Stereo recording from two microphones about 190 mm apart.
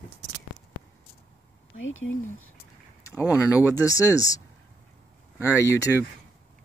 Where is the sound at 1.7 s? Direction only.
90° left.